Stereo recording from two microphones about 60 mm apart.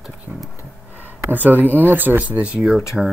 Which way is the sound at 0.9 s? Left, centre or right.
Right.